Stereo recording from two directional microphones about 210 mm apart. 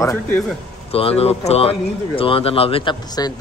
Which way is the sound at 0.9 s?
30° left (ahead or behind).